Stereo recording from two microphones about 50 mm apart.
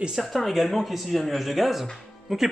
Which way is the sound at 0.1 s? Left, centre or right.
Centre.